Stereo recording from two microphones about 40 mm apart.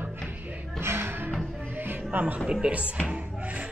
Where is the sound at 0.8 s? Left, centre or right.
Right.